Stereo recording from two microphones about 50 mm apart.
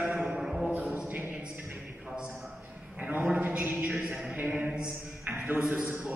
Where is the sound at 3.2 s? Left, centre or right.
Right.